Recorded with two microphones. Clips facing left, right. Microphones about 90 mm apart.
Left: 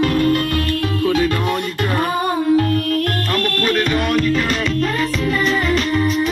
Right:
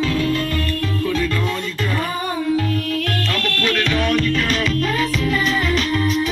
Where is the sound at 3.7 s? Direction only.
10° left (ahead or behind).